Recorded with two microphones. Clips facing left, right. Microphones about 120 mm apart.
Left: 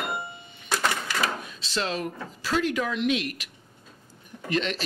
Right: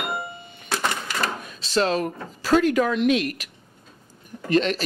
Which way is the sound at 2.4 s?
45° right (ahead or behind).